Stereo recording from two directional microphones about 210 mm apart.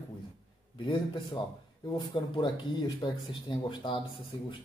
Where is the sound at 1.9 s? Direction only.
20° left (ahead or behind).